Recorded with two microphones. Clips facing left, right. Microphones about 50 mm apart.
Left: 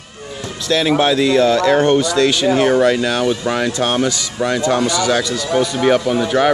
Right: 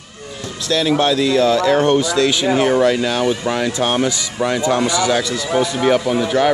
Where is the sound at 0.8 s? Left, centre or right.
Centre.